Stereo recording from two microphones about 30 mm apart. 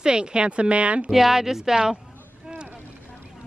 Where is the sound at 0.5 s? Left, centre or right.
Right.